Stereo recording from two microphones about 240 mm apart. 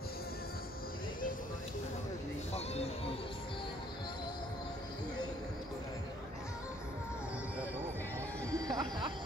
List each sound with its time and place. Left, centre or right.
2.5 s music: left
8.6 s music: centre